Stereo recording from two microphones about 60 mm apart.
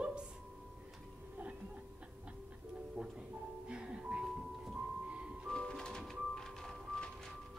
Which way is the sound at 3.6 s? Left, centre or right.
Centre.